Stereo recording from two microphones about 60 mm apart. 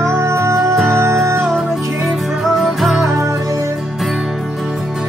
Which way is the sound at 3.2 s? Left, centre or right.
Right.